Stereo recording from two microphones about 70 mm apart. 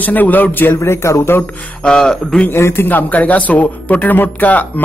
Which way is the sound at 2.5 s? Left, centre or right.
Left.